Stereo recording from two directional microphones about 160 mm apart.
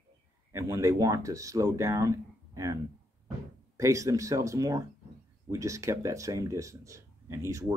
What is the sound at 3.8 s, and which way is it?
Speech, 20° right (ahead or behind).